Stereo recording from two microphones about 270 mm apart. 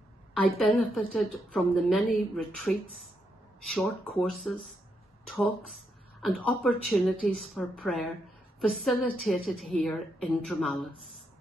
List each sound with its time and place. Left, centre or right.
0.6 s a woman's voice: centre
5.3 s a woman's voice: centre